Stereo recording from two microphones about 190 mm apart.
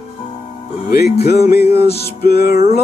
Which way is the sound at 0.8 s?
55° left (ahead or behind).